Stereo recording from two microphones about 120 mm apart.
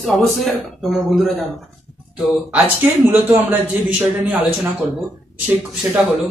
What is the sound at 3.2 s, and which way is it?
Speech, 15° right (ahead or behind).